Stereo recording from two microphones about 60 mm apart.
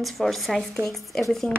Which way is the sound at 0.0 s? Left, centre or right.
Centre.